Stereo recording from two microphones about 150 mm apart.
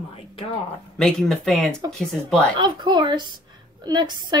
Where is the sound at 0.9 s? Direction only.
5° left (ahead or behind).